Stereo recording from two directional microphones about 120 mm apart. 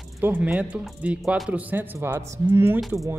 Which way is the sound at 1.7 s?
15° right (ahead or behind).